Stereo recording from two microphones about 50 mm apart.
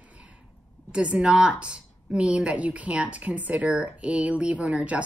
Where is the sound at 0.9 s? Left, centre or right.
Right.